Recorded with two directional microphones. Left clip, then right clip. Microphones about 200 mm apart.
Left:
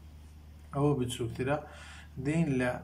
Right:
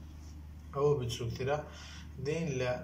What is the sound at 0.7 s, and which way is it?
Speech, 45° left (ahead or behind).